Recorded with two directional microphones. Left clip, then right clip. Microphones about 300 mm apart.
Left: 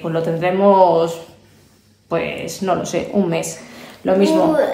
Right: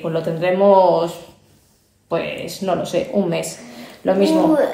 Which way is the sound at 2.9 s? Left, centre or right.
Left.